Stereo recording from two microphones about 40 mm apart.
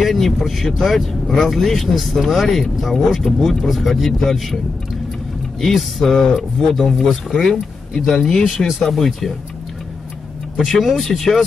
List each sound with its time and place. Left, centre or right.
0.0 s speech: centre
5.6 s speech: centre
8.1 s speech: centre
8.5 s speech: centre
10.6 s speech: centre